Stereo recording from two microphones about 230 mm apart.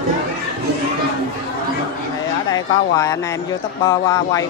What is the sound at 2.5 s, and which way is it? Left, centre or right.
A man's voice, centre.